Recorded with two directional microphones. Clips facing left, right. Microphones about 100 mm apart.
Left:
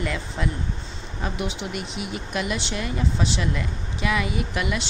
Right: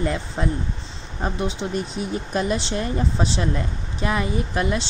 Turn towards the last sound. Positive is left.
turn(degrees=-35)  # may be behind; listen again after turning